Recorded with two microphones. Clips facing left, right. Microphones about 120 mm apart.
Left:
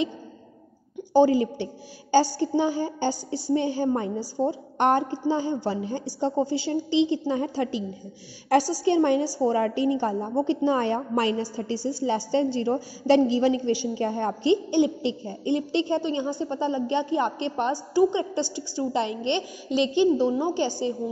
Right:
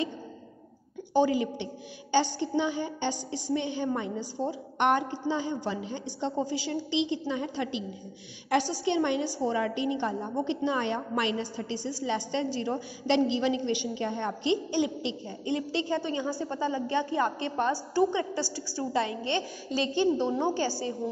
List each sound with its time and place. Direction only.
1.1 s a woman's voice: 35° left (ahead or behind); by 20.7 s 15° left (ahead or behind)